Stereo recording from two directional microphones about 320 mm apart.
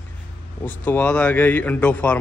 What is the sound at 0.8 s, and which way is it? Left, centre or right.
Speech, centre.